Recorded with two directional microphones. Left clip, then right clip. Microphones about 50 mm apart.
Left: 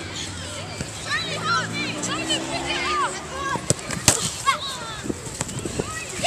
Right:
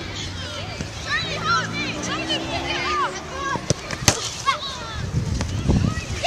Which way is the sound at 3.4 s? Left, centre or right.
Centre.